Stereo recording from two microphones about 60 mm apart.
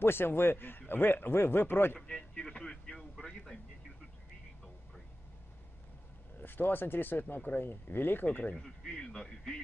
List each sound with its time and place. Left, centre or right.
0.0 s speech: left
2.0 s vehicle: centre
6.4 s speech: left
8.5 s speech: centre